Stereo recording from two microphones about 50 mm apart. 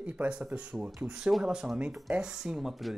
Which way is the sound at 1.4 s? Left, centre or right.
Centre.